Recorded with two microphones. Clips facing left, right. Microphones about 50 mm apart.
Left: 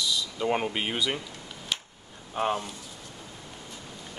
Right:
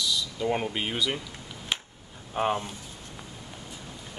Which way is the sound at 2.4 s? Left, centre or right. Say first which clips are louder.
Right 1 dB; centre.